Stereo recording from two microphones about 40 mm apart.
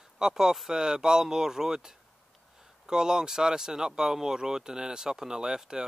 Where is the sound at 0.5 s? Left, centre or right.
Centre.